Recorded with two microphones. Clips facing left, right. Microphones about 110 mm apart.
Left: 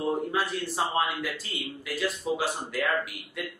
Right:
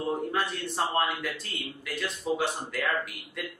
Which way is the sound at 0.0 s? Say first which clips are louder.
Left 1 dB; centre (ahead or behind).